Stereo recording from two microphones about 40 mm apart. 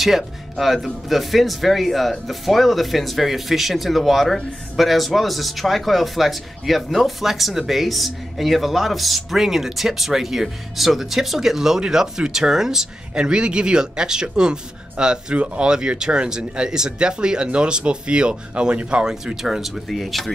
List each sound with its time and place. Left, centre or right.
0.0 s speech: centre
13.1 s speech: right
19.4 s speech: centre